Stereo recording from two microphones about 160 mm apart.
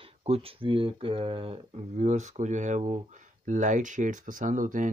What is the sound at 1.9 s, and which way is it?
Speech, 50° right (ahead or behind).